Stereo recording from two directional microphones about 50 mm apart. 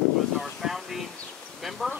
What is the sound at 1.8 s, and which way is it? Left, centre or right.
Speech, centre.